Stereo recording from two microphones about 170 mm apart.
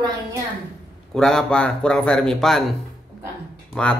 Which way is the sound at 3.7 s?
5° left (ahead or behind).